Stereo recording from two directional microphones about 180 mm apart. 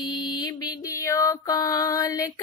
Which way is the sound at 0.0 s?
25° left (ahead or behind).